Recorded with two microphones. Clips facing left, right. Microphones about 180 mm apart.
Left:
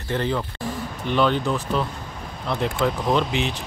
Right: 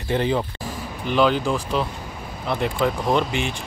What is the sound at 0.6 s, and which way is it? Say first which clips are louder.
Speech: left 1 dB; 5° right (ahead or behind).